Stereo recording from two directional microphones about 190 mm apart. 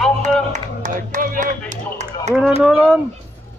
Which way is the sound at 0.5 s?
40° right (ahead or behind).